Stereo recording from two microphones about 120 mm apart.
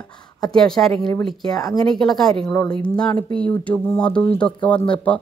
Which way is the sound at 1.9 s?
5° left (ahead or behind).